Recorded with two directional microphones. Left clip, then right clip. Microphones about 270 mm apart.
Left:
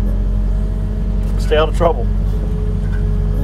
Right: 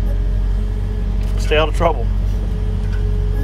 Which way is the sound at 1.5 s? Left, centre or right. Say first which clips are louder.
Left 2 dB; right.